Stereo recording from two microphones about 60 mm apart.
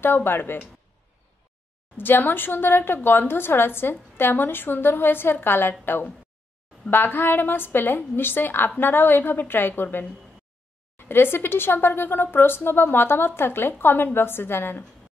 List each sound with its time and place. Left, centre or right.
0.0 s a woman's voice: left
2.0 s a woman's voice: left